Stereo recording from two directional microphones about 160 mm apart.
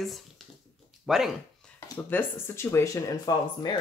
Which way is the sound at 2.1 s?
15° left (ahead or behind).